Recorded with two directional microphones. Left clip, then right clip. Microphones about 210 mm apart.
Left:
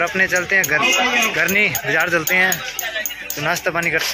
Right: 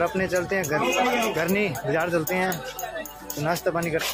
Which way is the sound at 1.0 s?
45° right (ahead or behind).